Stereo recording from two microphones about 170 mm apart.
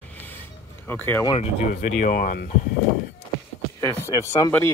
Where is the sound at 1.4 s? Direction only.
50° left (ahead or behind).